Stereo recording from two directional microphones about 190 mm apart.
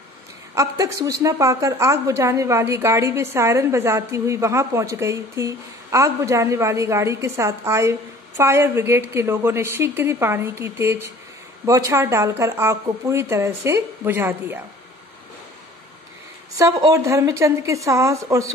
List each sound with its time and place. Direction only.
0.6 s a woman's voice: 15° right (ahead or behind)
16.5 s a woman's voice: 20° right (ahead or behind)